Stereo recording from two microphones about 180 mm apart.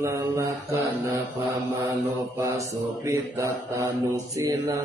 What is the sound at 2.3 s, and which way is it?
Mantra, 15° right (ahead or behind).